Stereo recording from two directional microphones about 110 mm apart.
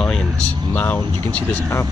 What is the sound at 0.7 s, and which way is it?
Speech, 15° left (ahead or behind).